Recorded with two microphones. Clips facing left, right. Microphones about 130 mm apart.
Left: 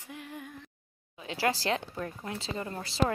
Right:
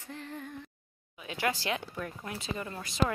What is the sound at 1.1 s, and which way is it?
Speech, 30° left (ahead or behind).